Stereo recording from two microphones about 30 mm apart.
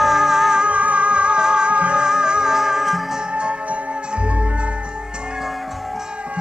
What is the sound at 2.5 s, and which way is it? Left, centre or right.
Music, centre.